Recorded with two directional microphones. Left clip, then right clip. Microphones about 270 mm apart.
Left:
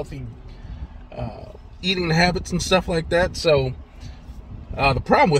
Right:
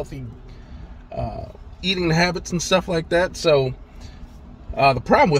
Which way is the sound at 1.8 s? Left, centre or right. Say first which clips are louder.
Even; centre.